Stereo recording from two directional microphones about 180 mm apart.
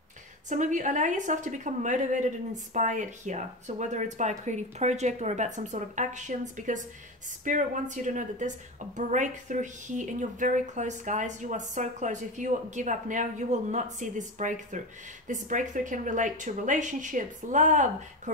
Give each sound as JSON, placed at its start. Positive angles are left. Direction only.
{"t": 0.5, "sound": "a woman's voice", "side_deg": -45}